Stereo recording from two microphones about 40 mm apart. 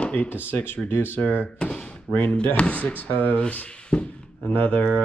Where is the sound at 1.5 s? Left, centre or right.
Left.